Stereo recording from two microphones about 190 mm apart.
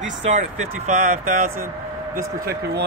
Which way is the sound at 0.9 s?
40° right (ahead or behind).